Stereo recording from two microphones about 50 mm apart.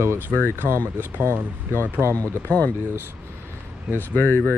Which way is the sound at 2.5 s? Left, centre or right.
Left.